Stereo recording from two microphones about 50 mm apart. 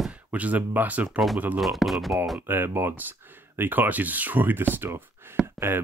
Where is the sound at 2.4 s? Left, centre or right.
Right.